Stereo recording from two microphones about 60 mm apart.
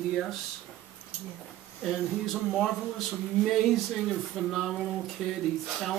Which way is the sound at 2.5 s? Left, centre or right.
Centre.